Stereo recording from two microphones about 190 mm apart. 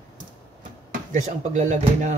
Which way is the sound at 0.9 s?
40° right (ahead or behind).